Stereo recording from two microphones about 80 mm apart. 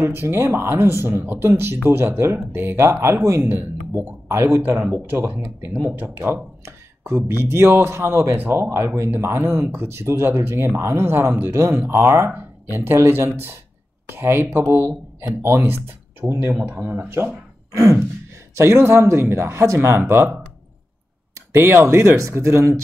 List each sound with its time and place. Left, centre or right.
0.0 s speech: right
18.6 s speech: right
21.5 s speech: right